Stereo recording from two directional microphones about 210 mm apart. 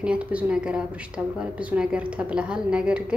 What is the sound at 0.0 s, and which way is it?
A woman's voice, 5° right (ahead or behind).